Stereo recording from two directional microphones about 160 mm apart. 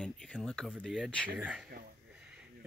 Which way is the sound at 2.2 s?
5° right (ahead or behind).